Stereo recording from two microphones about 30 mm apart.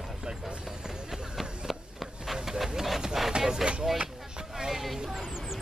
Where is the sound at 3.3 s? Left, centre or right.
Right.